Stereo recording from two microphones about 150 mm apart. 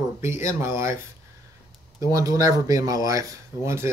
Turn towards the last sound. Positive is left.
turn(degrees=-20)  # may be behind; listen again after turning